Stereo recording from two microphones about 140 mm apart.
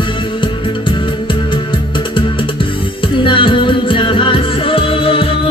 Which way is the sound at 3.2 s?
35° left (ahead or behind).